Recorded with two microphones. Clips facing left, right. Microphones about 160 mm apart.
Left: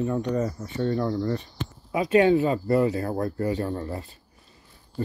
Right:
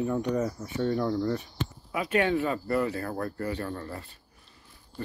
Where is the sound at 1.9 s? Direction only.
25° left (ahead or behind).